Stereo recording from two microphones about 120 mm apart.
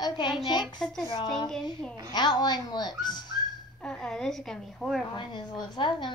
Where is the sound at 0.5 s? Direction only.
35° left (ahead or behind).